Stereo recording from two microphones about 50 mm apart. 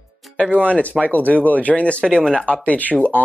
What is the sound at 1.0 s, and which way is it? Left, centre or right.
Speech, left.